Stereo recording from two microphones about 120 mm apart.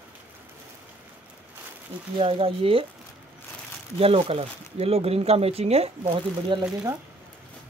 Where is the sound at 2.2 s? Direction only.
50° right (ahead or behind).